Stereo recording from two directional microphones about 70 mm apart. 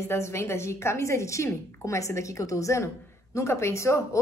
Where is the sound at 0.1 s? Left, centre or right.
Left.